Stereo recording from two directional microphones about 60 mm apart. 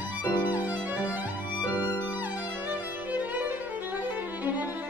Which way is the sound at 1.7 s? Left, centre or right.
Left.